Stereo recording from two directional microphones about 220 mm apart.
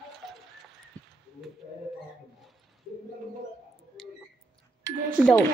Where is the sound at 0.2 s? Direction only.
Centre (ahead or behind).